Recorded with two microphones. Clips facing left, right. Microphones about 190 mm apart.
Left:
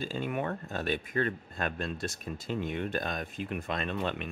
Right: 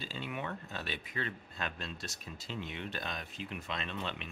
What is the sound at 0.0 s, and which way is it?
Speech, 50° left (ahead or behind).